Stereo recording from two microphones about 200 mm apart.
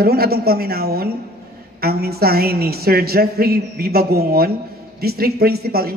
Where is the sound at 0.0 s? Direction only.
50° right (ahead or behind).